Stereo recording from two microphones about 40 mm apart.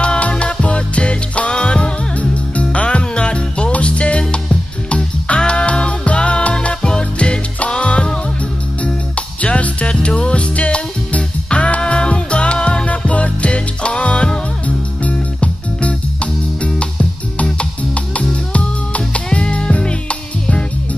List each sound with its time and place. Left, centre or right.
0.0 s music: left
4.2 s music: centre
4.8 s music: left
17.9 s music: left